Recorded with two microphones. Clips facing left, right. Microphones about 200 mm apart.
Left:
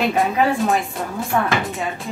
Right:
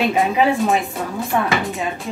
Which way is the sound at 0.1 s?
Centre (ahead or behind).